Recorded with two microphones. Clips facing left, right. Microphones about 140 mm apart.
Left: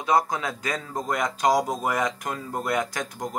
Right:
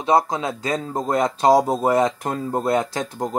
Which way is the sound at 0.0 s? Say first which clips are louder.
Right 4 dB; 25° right (ahead or behind).